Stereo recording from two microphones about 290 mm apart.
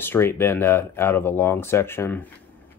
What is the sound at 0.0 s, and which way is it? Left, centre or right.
Speech, centre.